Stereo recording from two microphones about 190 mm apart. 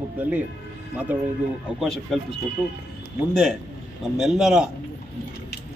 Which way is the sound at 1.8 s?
Centre (ahead or behind).